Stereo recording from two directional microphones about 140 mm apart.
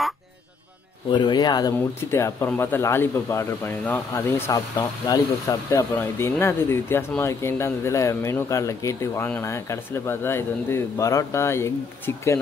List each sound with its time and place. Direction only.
1.1 s speech: 30° left (ahead or behind)
2.0 s speech: 20° left (ahead or behind)